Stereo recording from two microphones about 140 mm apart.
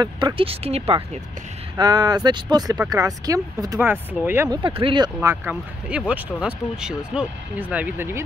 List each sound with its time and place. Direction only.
0.0 s speech: 35° right (ahead or behind)
1.8 s speech: 30° right (ahead or behind)
3.8 s speech: 15° right (ahead or behind)
4.5 s speech: 35° right (ahead or behind)
5.2 s speech: 15° right (ahead or behind)